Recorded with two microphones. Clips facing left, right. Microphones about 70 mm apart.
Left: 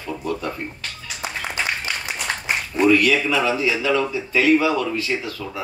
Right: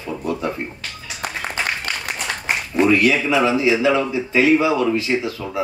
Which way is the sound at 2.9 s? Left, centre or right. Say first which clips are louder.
Left 1 dB; right.